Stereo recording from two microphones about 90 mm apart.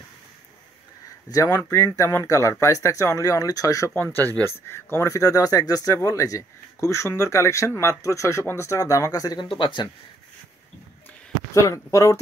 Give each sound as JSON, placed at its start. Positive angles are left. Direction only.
{"t": 1.3, "sound": "speech", "side_deg": 40}
{"t": 4.0, "sound": "speech", "side_deg": 25}
{"t": 9.4, "sound": "speech", "side_deg": 65}
{"t": 11.5, "sound": "speech", "side_deg": 35}